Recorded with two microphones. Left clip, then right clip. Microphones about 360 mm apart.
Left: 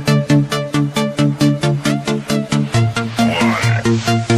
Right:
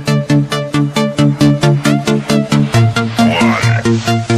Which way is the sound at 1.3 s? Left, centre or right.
Right.